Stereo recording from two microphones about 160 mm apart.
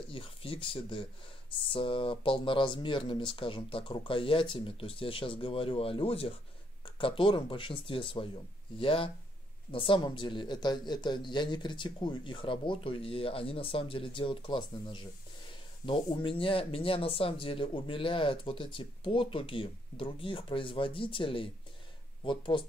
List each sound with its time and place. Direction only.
0.1 s speech: 35° left (ahead or behind)